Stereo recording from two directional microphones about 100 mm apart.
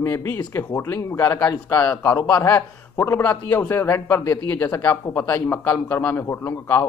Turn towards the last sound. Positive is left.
turn(degrees=25)  # may be behind; listen again after turning